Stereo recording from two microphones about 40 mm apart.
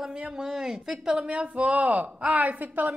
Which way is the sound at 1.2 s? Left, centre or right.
Right.